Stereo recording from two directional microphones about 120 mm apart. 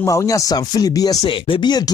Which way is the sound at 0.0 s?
25° left (ahead or behind).